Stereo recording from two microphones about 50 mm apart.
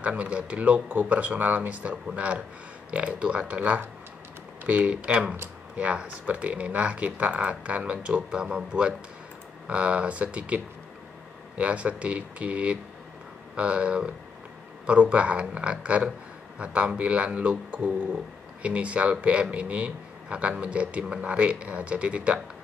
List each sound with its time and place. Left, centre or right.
0.0 s speech: right